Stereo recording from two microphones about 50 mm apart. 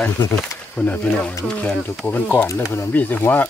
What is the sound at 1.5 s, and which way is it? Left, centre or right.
Speech, centre.